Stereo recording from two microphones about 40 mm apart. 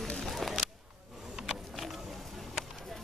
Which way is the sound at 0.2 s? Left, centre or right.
Centre.